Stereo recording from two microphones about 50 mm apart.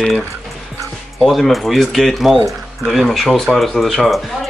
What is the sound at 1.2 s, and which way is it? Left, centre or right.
Speech, centre.